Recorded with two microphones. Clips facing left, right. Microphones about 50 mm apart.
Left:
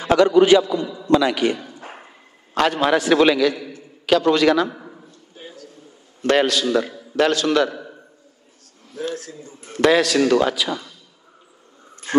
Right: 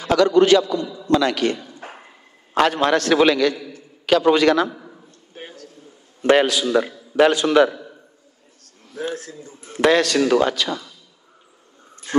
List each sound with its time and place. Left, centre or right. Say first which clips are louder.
0.0 s a sound: left 1 dB; left
0.3 s a man's voice: even; centre
0.7 s a man's voice: left 1 dB; left
1.2 s a man's voice: left 1 dB; centre
2.5 s speech: right 1 dB; centre
3.5 s a sound: left 1 dB; left
4.2 s a man's voice: right 3 dB; centre
4.5 s speech: even; centre
5.3 s a sound: right 2 dB; right
6.3 s a man's voice: right 1 dB; centre
8.9 s a man's voice: even; right
9.7 s speech: even; centre
12.1 s speech: left 1 dB; left